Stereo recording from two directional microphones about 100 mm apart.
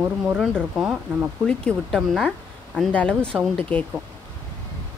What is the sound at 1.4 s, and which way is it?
A woman's voice, 10° left (ahead or behind).